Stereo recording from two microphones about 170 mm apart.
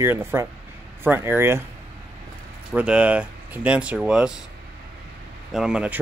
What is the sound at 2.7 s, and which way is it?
Speech, 5° right (ahead or behind).